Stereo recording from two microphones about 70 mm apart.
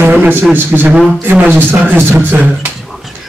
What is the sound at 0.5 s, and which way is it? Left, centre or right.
Speech, right.